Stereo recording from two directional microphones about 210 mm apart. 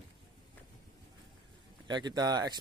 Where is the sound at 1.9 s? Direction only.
20° right (ahead or behind).